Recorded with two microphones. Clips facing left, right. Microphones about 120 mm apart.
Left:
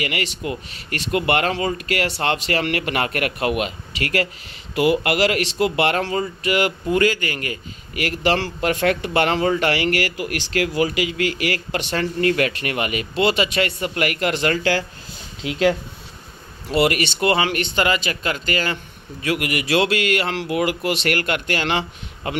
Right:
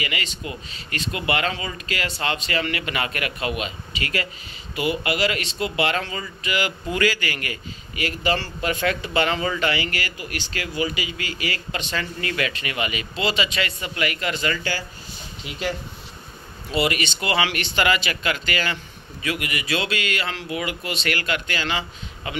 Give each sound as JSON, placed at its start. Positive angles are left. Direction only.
{"t": 0.0, "sound": "speech", "side_deg": 60}
{"t": 4.7, "sound": "speech", "side_deg": 75}
{"t": 8.2, "sound": "speech", "side_deg": 75}
{"t": 9.6, "sound": "speech", "side_deg": 70}
{"t": 15.4, "sound": "speech", "side_deg": 90}
{"t": 16.7, "sound": "speech", "side_deg": 55}
{"t": 19.2, "sound": "speech", "side_deg": 60}